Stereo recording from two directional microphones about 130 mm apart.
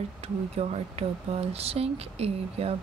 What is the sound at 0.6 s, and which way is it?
Speech, 50° right (ahead or behind).